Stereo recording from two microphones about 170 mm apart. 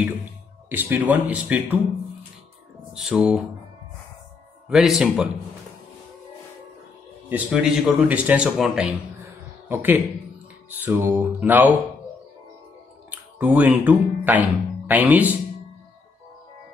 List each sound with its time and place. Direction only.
0.7 s speech: 10° right (ahead or behind)
3.0 s speech: 5° right (ahead or behind)
4.6 s speech: centre (ahead or behind)
7.2 s speech: 10° right (ahead or behind)
13.1 s speech: 10° right (ahead or behind)